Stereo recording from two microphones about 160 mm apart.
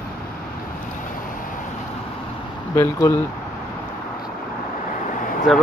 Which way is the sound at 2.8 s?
20° left (ahead or behind).